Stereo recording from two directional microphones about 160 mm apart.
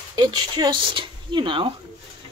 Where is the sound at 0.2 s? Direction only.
25° right (ahead or behind).